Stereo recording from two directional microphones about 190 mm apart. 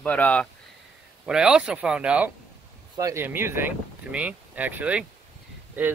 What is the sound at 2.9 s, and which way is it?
Speech, 15° right (ahead or behind).